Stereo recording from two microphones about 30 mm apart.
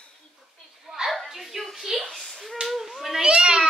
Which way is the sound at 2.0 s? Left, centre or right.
Centre.